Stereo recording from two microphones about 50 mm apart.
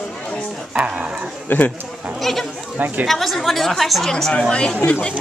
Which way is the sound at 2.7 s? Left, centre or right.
Right.